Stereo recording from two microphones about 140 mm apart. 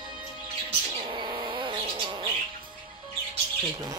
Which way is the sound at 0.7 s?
40° right (ahead or behind).